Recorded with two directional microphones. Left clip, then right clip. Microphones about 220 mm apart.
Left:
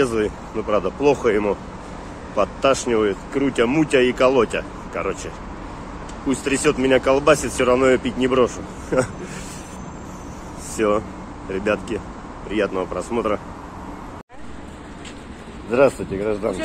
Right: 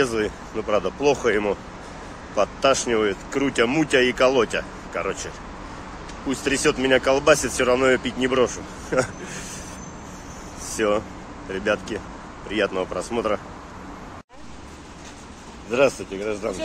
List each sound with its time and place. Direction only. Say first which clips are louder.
0.0 s speech: left 2 dB; 10° right (ahead or behind)
10.8 s speech: left 2 dB; 5° right (ahead or behind)
15.7 s speech: left 3 dB; centre (ahead or behind)